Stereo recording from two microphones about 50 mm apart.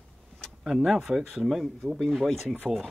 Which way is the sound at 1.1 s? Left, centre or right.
Centre.